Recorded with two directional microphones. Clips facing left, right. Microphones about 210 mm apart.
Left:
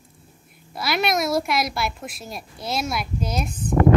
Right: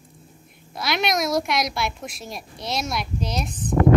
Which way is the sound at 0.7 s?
5° left (ahead or behind).